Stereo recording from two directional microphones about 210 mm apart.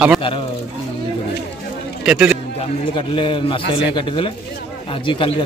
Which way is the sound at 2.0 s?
5° right (ahead or behind).